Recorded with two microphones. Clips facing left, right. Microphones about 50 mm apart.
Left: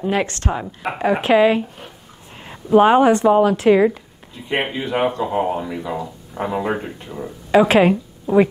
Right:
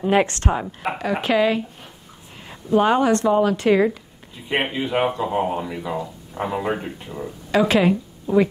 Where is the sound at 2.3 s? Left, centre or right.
Centre.